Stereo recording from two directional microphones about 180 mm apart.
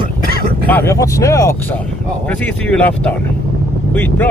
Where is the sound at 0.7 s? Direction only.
15° left (ahead or behind).